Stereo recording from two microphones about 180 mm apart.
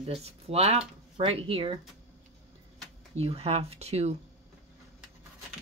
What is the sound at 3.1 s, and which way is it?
Speech, 35° right (ahead or behind).